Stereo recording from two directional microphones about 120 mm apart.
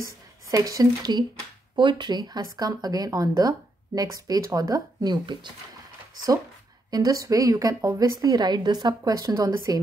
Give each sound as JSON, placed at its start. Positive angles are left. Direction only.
{"t": 0.5, "sound": "speech", "side_deg": -30}
{"t": 6.9, "sound": "a woman's voice", "side_deg": -30}